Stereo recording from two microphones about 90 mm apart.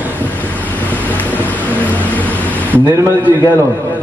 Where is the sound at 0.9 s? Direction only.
20° left (ahead or behind).